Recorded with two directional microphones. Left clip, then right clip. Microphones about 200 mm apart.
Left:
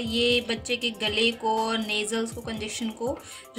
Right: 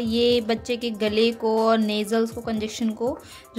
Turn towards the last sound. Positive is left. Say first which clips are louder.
# right 4 dB
turn(degrees=-50)  # may be behind; listen again after turning